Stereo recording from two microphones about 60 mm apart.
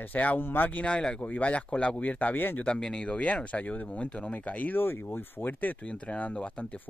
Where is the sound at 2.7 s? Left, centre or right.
Centre; by 5.7 s left.